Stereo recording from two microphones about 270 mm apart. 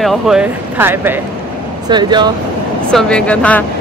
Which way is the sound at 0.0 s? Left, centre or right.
Centre.